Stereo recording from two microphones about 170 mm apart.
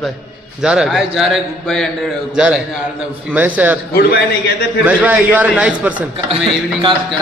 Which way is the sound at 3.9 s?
70° left (ahead or behind).